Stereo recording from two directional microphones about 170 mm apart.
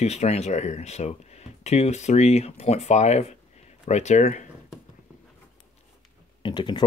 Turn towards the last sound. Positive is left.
turn(degrees=25)  # may be behind; listen again after turning